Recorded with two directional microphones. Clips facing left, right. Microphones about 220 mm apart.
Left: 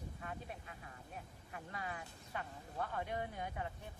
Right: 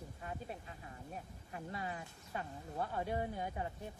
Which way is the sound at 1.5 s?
30° right (ahead or behind).